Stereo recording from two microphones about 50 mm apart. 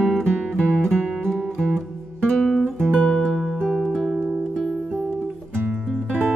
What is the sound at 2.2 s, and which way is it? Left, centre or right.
Guitar, centre.